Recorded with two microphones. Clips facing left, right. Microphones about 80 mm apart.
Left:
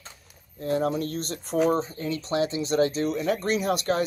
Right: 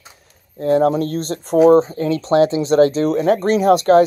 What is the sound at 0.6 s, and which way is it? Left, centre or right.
Speech, right.